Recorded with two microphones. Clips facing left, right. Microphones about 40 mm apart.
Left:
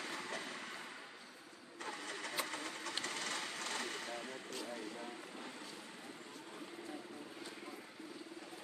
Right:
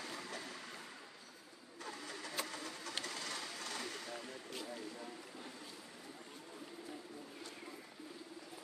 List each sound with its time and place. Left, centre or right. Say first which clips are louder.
0.1 s train: left 3 dB; left
1.8 s vehicle: left 3 dB; left
2.4 s sewing machine: left 3 dB; left
3.0 s a sound: left 2 dB; left